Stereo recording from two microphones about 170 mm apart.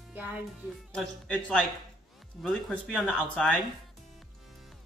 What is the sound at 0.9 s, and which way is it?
Speech, 5° left (ahead or behind).